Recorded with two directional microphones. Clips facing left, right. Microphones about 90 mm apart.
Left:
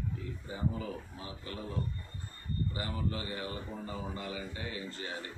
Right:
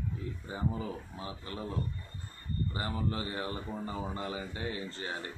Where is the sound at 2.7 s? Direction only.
30° right (ahead or behind).